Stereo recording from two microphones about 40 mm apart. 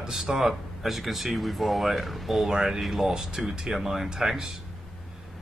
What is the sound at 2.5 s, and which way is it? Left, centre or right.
Speech, centre.